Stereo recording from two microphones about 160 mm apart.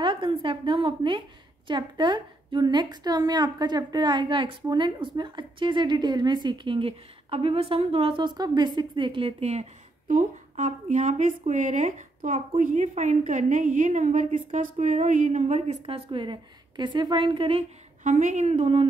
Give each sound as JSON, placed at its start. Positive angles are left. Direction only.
{"t": 0.0, "sound": "a woman's voice", "side_deg": -30}
{"t": 9.4, "sound": "a woman's voice", "side_deg": -50}